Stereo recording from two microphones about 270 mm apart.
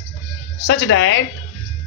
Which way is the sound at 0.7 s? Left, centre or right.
Left.